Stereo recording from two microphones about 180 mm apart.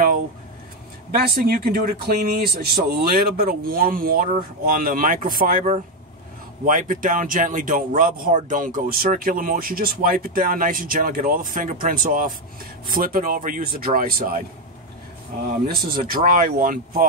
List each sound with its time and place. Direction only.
1.1 s speech: 55° right (ahead or behind)
15.4 s speech: 55° right (ahead or behind)